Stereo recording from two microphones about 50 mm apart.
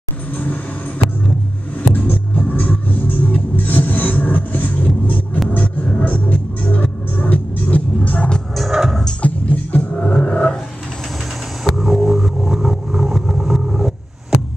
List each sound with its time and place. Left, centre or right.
0.4 s a sound: left
1.8 s music: left
8.5 s music: centre
9.2 s music: left
9.9 s a sound: left
11.7 s vehicle: centre